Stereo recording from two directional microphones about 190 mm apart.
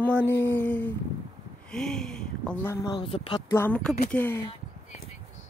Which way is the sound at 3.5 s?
10° left (ahead or behind).